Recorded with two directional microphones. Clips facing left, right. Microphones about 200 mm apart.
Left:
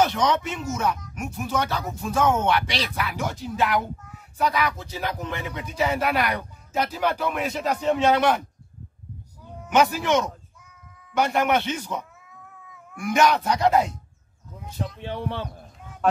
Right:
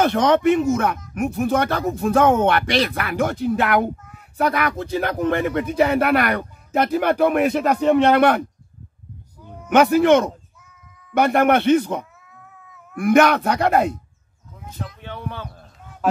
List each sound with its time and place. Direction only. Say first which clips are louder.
0.0 s speech: right 6 dB; 55° right (ahead or behind)
9.7 s speech: right 7 dB; 60° right (ahead or behind)
15.0 s speech: left 3 dB; 30° left (ahead or behind)